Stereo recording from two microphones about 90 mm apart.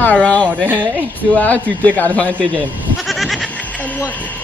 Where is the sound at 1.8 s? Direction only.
20° left (ahead or behind).